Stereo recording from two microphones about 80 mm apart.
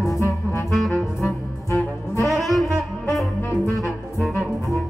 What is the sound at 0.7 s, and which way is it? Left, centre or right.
Music, centre.